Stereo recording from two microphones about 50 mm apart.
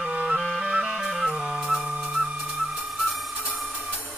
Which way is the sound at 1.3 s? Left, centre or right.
Centre.